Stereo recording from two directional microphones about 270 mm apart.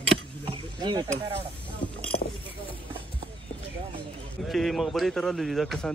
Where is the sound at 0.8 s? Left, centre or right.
Centre.